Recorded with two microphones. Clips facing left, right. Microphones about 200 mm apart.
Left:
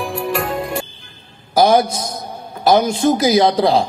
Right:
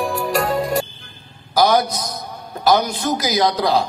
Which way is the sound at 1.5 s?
30° left (ahead or behind).